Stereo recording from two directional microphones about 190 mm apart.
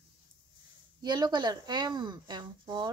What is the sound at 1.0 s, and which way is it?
A woman's voice, 20° right (ahead or behind).